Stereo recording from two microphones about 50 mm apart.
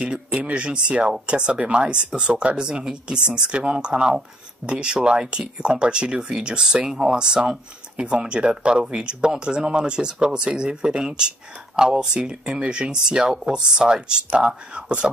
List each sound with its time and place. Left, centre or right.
0.0 s speech: right